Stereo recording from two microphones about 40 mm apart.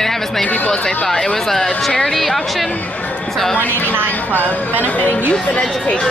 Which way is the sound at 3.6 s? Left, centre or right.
Left.